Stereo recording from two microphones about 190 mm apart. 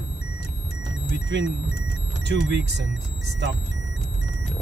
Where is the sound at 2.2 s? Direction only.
65° right (ahead or behind).